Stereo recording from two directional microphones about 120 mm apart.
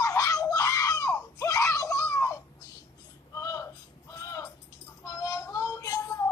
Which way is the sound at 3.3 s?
25° left (ahead or behind).